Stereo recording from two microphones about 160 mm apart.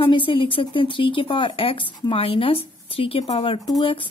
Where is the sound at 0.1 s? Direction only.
30° left (ahead or behind).